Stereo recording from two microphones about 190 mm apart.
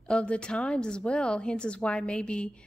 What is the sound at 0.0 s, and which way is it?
A woman's voice, 5° left (ahead or behind).